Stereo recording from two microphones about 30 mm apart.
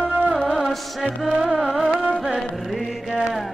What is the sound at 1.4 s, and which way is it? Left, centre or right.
Music, centre.